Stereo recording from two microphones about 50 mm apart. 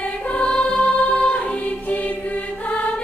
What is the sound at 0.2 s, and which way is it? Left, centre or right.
Music, left.